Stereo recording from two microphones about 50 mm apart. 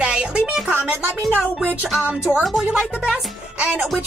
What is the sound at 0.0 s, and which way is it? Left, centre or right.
Music, right.